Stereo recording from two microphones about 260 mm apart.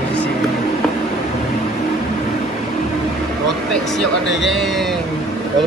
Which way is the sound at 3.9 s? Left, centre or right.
Centre.